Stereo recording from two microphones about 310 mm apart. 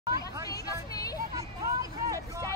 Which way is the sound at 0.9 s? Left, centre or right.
Centre.